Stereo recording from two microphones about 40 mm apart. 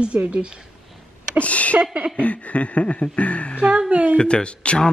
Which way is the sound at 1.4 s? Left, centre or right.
Left.